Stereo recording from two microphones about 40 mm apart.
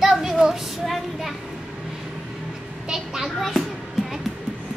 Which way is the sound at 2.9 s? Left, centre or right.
Centre.